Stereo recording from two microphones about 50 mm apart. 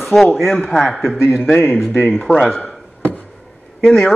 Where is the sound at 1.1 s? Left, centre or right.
Left.